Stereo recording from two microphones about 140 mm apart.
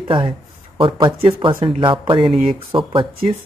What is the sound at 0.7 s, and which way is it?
Speech, 35° right (ahead or behind).